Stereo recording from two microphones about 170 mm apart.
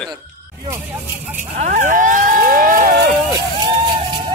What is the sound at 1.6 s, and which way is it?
Speech, 45° right (ahead or behind).